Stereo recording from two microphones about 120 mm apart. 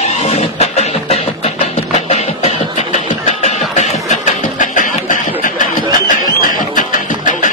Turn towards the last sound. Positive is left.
turn(degrees=90)